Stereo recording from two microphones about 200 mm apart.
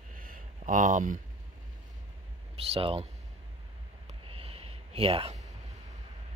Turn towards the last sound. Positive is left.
turn(degrees=-30)  # may be behind; listen again after turning